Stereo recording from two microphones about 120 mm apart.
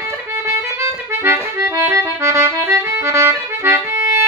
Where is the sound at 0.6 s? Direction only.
20° right (ahead or behind).